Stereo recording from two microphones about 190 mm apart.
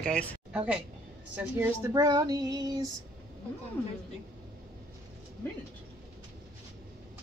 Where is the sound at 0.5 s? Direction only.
5° right (ahead or behind).